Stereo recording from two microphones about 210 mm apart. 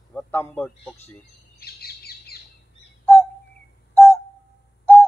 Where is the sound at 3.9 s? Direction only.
10° left (ahead or behind).